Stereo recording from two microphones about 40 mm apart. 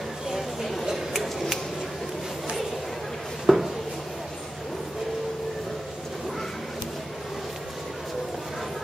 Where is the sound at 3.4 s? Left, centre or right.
Centre.